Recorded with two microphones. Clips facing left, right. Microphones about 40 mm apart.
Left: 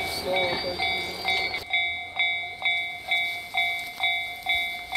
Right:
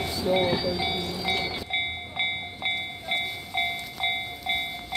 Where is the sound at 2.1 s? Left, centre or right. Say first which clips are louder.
Left 2 dB; centre.